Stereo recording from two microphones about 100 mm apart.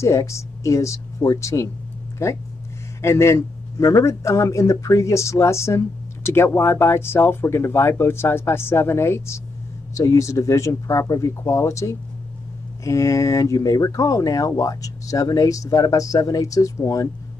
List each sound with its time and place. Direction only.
0.0 s speech: 30° left (ahead or behind)
3.0 s speech: 25° left (ahead or behind)